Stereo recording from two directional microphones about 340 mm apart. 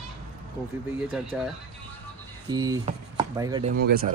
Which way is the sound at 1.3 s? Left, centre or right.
Centre.